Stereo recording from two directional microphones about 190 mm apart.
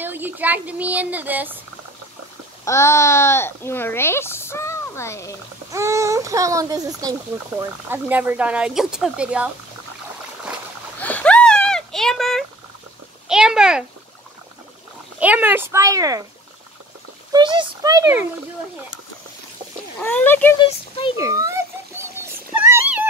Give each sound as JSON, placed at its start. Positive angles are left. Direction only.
{"t": 0.0, "sound": "speech", "side_deg": -10}
{"t": 2.6, "sound": "speech", "side_deg": 15}
{"t": 5.7, "sound": "speech", "side_deg": -15}
{"t": 11.0, "sound": "a sound", "side_deg": 10}
{"t": 13.3, "sound": "a child's voice", "side_deg": -5}
{"t": 15.1, "sound": "speech", "side_deg": -10}
{"t": 17.3, "sound": "a child's voice", "side_deg": -25}
{"t": 20.0, "sound": "speech", "side_deg": 10}
{"t": 21.2, "sound": "children playing", "side_deg": -15}
{"t": 22.7, "sound": "a sound", "side_deg": -10}